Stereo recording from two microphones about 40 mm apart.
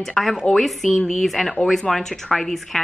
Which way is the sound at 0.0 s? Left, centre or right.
Centre.